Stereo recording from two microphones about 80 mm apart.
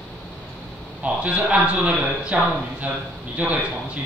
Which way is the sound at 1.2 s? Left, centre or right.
Centre.